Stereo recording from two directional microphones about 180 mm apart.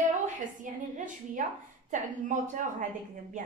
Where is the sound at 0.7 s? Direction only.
45° right (ahead or behind).